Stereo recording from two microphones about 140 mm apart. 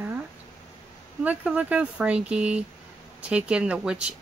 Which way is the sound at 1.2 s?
10° right (ahead or behind).